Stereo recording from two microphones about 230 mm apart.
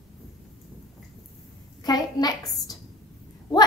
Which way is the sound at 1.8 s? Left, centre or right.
Centre.